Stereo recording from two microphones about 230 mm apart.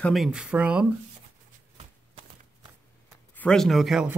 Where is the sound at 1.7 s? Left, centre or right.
Right.